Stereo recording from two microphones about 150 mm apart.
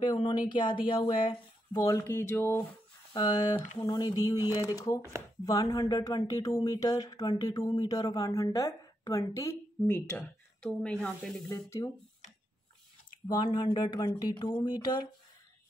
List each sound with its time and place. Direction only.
0.0 s speech: 30° left (ahead or behind)
1.8 s speech: 20° left (ahead or behind)
3.1 s speech: 25° left (ahead or behind); by 11.4 s 5° left (ahead or behind)
11.4 s speech: 20° left (ahead or behind)
13.3 s speech: 25° left (ahead or behind)